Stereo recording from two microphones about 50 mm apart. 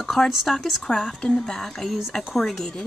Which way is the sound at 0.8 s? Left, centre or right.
Centre.